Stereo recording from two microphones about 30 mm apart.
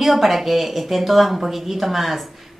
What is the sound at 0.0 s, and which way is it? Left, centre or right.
A woman's voice, centre.